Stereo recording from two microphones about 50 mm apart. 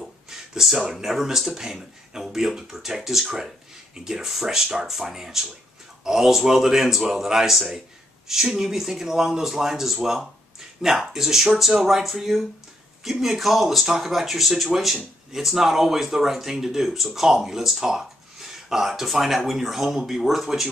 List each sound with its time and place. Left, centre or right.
0.3 s speech: centre